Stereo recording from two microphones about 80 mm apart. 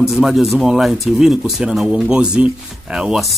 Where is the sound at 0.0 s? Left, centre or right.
Centre.